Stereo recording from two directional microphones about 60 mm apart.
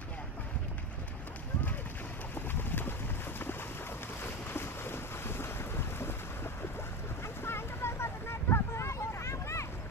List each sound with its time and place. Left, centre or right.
2.3 s boat: left
4.2 s boat: left
7.4 s vehicle: left